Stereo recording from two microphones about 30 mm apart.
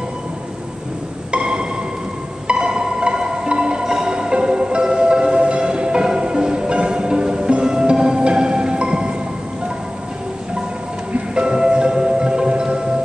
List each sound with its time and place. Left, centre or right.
1.3 s music: right
11.1 s music: right